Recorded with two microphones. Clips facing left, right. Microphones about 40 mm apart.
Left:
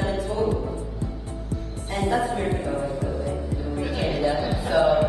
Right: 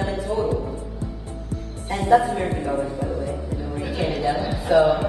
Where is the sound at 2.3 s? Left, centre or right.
Right.